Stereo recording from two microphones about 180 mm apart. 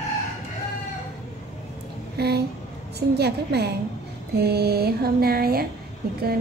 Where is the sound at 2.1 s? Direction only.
65° right (ahead or behind).